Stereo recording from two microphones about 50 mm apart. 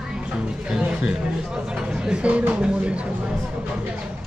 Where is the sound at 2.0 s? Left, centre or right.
Right.